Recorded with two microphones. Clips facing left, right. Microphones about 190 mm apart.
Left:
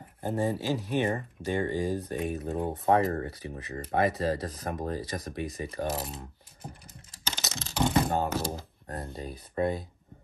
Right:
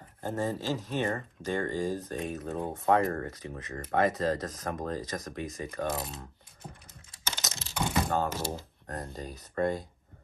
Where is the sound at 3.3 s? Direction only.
30° left (ahead or behind).